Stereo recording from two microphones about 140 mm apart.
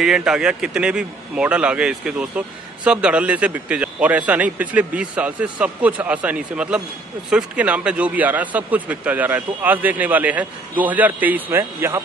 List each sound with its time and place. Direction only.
0.0 s speech: 5° right (ahead or behind)